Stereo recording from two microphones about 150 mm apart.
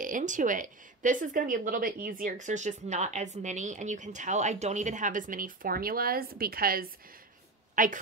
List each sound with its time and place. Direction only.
0.0 s speech: 55° right (ahead or behind); by 6.9 s 75° right (ahead or behind)
7.7 s a woman's voice: 65° right (ahead or behind)